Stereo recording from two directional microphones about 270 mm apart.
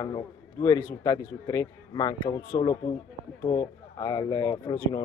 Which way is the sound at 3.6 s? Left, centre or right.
Centre.